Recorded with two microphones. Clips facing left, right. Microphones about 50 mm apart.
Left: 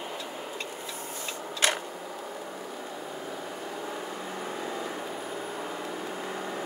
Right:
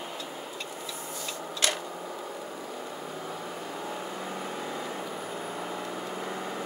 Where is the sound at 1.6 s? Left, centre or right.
Left.